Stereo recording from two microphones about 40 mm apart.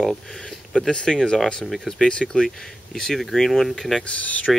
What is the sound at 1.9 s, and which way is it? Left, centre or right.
Speech, centre.